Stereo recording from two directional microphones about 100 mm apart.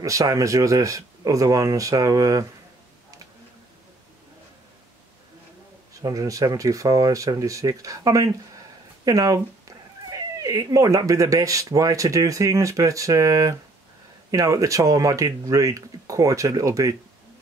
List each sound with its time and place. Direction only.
0.0 s speech: 35° right (ahead or behind)
5.9 s speech: 35° right (ahead or behind)